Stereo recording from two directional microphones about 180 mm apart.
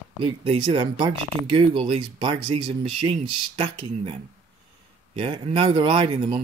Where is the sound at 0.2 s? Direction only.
30° right (ahead or behind).